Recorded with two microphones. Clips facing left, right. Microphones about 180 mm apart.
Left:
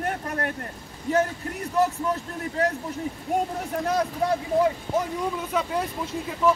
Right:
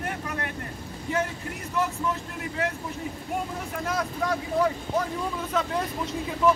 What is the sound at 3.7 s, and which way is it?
Speech, 35° left (ahead or behind).